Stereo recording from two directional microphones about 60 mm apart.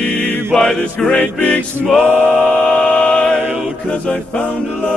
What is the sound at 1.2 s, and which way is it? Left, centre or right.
Music, left.